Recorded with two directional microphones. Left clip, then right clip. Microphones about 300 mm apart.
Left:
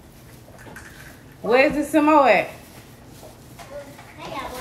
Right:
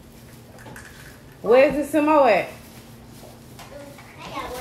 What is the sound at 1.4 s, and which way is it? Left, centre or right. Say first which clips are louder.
Speech: right 2 dB; centre.